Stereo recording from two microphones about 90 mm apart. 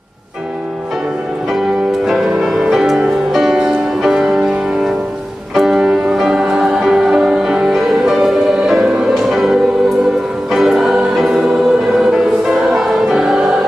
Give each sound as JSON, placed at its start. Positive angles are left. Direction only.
{"t": 2.0, "sound": "music", "side_deg": -5}